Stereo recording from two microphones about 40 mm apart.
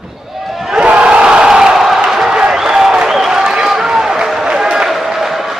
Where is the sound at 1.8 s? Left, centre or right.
Centre.